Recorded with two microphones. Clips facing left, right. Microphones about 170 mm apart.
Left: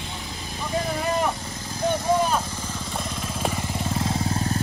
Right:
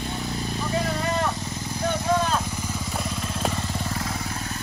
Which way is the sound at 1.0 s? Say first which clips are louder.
Left 1 dB; 15° left (ahead or behind).